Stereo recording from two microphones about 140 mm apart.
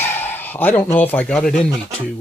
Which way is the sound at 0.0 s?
15° left (ahead or behind).